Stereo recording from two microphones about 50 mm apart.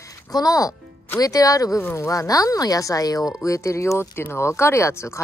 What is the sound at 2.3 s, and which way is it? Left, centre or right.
Speech, left.